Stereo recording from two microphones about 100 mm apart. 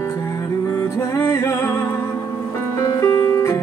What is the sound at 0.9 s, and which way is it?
Music, 25° left (ahead or behind).